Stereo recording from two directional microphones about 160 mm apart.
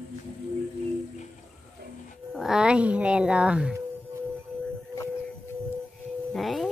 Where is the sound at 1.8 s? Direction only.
80° right.